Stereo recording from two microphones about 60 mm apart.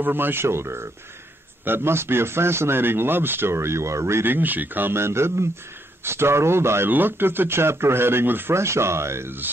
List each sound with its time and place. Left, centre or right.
0.0 s speech: right
4.3 s speech: right
6.9 s speech: right